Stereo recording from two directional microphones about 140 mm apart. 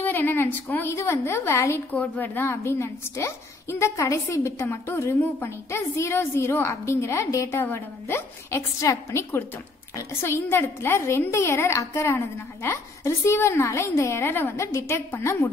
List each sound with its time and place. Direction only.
0.0 s a woman's voice: 15° left (ahead or behind)